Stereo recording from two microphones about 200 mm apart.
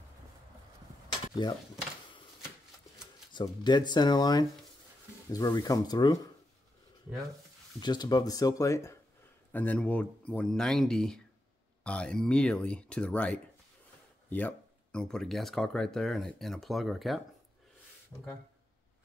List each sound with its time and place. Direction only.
3.3 s speech: 20° left (ahead or behind)
7.8 s speech: 20° left (ahead or behind); by 17.2 s centre (ahead or behind)
18.1 s speech: 10° left (ahead or behind)